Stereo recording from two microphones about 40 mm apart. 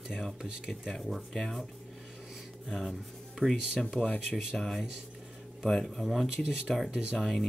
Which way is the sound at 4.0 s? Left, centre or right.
Centre.